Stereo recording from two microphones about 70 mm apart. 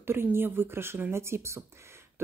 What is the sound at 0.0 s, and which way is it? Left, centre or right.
A woman's voice, right.